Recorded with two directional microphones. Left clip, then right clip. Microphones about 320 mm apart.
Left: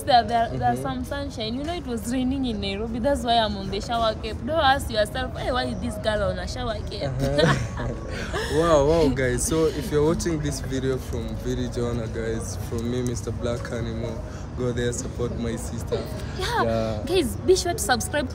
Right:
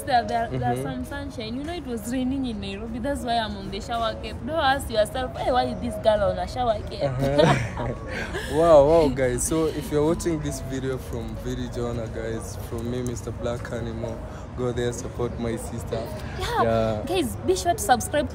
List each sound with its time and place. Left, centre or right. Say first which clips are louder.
0.1 s a woman's voice: left 3 dB; centre
8.6 s a woman's voice: right 5 dB; centre
14.6 s speech: even; centre
16.3 s a woman's voice: even; centre
16.6 s speech: right 2 dB; right
17.1 s a woman's voice: left 3 dB; centre